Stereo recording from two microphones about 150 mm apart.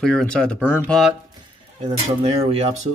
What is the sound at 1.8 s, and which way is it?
Speech, 45° right (ahead or behind).